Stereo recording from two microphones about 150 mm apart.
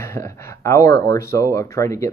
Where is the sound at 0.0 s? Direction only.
20° left (ahead or behind).